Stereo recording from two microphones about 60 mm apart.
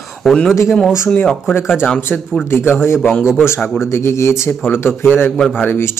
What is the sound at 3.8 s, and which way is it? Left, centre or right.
Speech, left.